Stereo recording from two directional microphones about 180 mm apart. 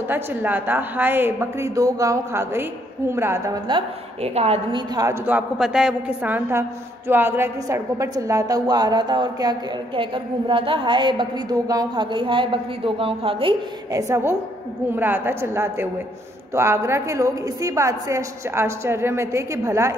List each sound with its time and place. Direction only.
0.1 s a woman's voice: 10° right (ahead or behind)
3.6 s a woman's voice: 30° right (ahead or behind)
4.9 s a woman's voice: 15° right (ahead or behind)
14.0 s a woman's voice: 15° right (ahead or behind)